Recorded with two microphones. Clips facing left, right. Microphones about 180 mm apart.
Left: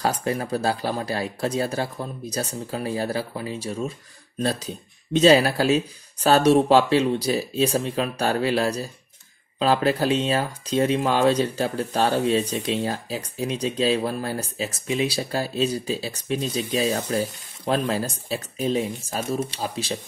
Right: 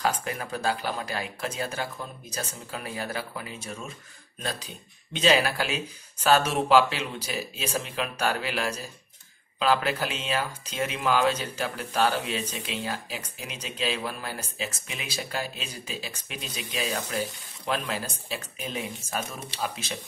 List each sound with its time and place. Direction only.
0.0 s speech: 35° left (ahead or behind)